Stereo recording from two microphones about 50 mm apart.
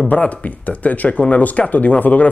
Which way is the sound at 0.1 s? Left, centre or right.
Left.